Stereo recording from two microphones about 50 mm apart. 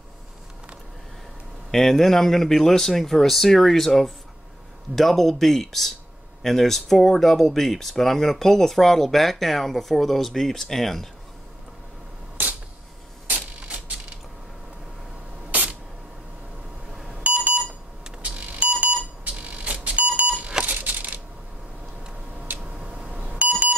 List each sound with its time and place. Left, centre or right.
1.7 s speech: centre
13.3 s mechanisms: right
17.1 s alarm clock: right
18.2 s alarm: right
20.6 s coin: right
22.7 s beep: right